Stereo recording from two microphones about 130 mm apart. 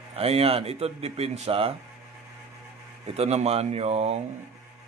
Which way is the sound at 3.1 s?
55° right (ahead or behind).